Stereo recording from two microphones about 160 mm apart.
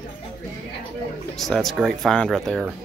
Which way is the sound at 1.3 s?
Centre (ahead or behind).